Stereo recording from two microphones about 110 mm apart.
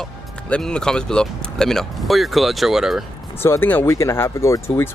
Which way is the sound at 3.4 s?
20° left (ahead or behind).